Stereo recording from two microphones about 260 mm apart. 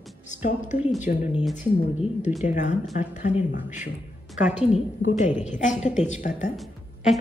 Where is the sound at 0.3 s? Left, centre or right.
Left.